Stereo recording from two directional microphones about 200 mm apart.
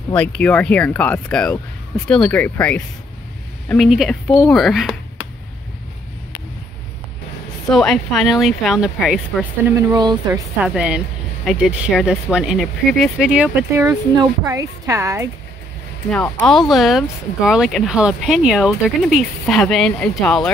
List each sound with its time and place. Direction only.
0.1 s speech: 5° left (ahead or behind)
7.7 s speech: centre (ahead or behind); by 10.4 s 20° right (ahead or behind)
10.6 s a woman's voice: 5° right (ahead or behind)
16.1 s speech: 5° left (ahead or behind)